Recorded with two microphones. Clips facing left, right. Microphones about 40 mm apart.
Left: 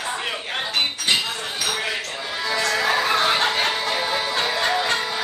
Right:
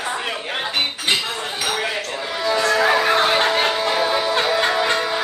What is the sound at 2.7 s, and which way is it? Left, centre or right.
Music, centre.